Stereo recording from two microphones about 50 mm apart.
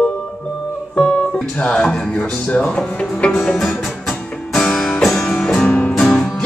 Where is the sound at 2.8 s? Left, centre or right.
Centre.